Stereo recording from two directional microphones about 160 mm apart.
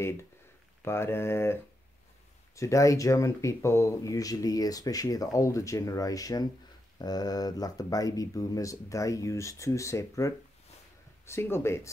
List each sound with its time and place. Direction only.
0.8 s speech: 15° left (ahead or behind)